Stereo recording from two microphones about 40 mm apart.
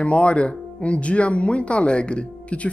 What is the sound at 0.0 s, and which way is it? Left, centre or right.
A woman's voice, left.